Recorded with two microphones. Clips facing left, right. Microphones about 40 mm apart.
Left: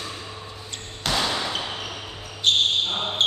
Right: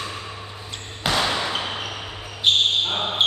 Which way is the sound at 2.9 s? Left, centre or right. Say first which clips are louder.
Right 2 dB; right.